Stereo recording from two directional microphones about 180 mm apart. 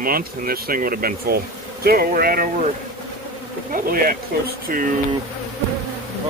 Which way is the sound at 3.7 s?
55° right (ahead or behind).